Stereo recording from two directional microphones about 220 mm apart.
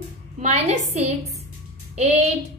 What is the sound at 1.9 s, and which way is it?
Speech, 30° right (ahead or behind).